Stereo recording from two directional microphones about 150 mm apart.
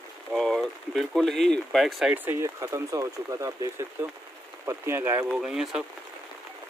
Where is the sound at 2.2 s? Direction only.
20° right (ahead or behind).